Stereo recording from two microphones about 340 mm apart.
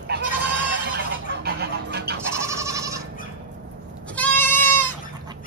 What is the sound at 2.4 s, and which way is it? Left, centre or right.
Goat, centre.